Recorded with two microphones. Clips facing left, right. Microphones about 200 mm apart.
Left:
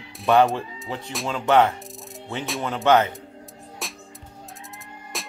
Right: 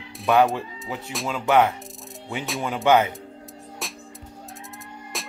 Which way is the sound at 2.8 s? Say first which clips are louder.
Even; 10° right (ahead or behind).